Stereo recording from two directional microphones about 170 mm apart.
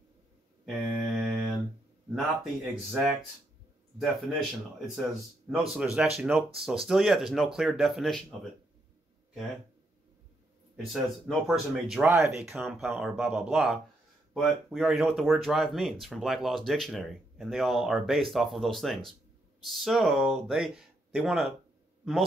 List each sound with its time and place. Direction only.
0.7 s mantra: centre (ahead or behind)
2.1 s speech: centre (ahead or behind)
10.9 s speech: centre (ahead or behind)
12.1 s speech: 15° right (ahead or behind)
12.5 s speech: centre (ahead or behind)